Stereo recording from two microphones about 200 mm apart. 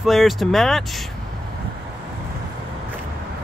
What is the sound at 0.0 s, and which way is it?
Speech, centre (ahead or behind).